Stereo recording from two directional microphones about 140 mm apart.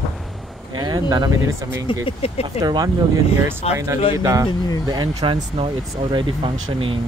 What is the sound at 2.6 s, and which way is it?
Speech, 30° right (ahead or behind).